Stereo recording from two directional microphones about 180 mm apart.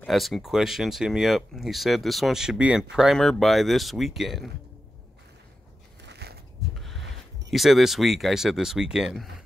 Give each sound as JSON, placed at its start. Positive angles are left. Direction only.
{"t": 0.0, "sound": "speech", "side_deg": 0}
{"t": 6.0, "sound": "a sound", "side_deg": -70}
{"t": 7.5, "sound": "speech", "side_deg": 0}